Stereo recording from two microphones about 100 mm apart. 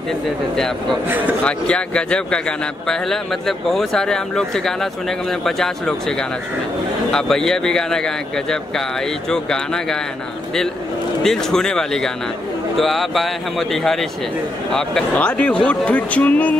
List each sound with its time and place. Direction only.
1.0 s speech: 20° right (ahead or behind)
1.4 s speech: 10° left (ahead or behind)
11.2 s speech: 5° left (ahead or behind)